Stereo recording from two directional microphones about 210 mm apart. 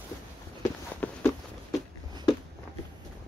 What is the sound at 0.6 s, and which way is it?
Walk, 10° left (ahead or behind).